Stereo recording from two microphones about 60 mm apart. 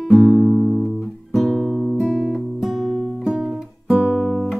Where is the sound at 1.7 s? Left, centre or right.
Centre.